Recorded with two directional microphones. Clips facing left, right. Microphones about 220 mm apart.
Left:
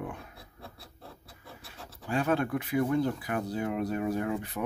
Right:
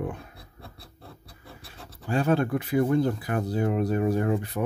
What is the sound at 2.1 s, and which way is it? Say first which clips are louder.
Speech: right 4 dB; 35° right (ahead or behind).